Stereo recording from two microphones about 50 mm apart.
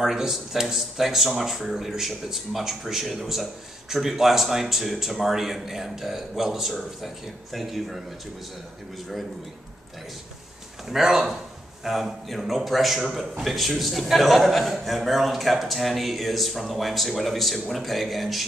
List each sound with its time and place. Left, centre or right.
0.0 s a man's voice: centre
10.9 s a man's voice: centre